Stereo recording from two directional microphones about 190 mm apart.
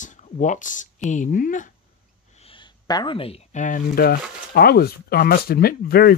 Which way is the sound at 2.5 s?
25° left (ahead or behind).